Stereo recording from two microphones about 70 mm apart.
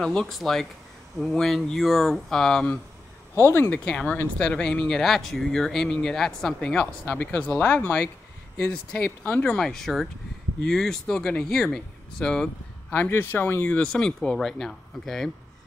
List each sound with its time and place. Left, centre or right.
0.0 s speech: centre
3.3 s speech: left
3.8 s speech: centre
4.8 s speech: centre
12.9 s speech: left
13.7 s speech: centre